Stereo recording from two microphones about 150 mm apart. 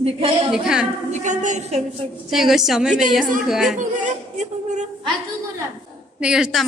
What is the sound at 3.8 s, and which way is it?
Speech, 55° right (ahead or behind).